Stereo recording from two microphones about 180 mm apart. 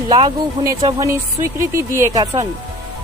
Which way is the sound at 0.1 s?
20° right (ahead or behind).